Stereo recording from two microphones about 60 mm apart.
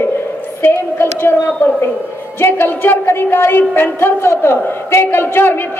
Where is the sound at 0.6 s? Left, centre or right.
Left.